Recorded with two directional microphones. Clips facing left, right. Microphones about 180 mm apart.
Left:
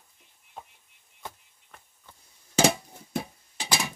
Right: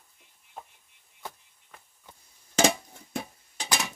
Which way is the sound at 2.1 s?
15° right (ahead or behind).